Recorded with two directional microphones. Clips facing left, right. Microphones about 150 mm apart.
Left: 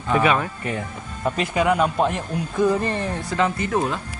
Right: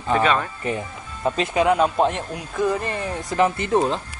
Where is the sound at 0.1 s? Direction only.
5° left (ahead or behind).